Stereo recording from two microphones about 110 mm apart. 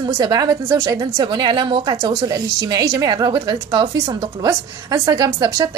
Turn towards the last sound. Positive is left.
turn(degrees=-30)  # may be behind; listen again after turning